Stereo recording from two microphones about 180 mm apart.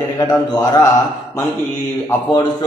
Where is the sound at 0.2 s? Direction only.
20° left (ahead or behind).